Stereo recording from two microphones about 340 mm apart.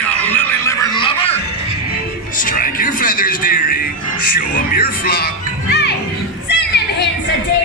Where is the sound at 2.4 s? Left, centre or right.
Left.